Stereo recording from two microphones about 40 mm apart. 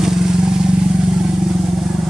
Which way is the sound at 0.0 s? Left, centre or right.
Centre.